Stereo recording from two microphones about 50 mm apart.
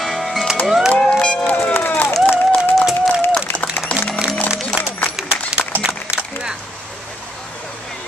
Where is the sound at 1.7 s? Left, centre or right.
Left.